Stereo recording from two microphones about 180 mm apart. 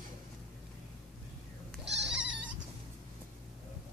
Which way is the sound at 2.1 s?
5° right (ahead or behind).